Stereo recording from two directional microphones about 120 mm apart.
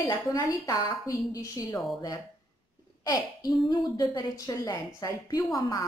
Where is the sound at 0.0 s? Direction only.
30° left (ahead or behind).